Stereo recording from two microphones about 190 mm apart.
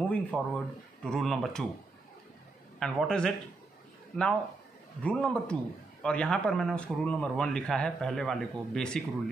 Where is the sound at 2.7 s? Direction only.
5° left (ahead or behind).